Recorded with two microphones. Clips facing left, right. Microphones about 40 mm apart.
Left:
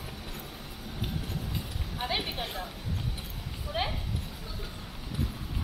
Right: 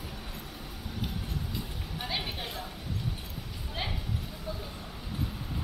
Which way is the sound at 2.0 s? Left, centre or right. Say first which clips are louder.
Left 3 dB; centre.